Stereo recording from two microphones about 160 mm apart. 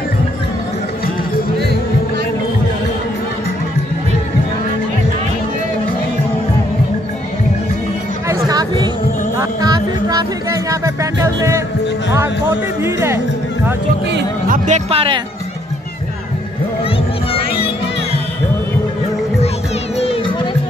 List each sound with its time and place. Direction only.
8.3 s music: 25° right (ahead or behind)
12.1 s speech: 15° right (ahead or behind)
14.7 s speech: 35° right (ahead or behind)
17.3 s music: 35° left (ahead or behind)